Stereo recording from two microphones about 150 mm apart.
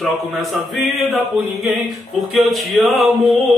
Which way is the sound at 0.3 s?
Centre (ahead or behind).